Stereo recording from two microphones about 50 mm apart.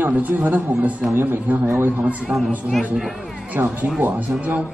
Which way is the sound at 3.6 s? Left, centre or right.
Right.